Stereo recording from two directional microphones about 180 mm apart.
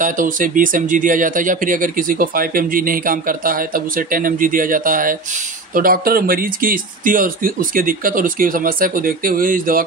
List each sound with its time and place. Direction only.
0.0 s speech: 50° right (ahead or behind)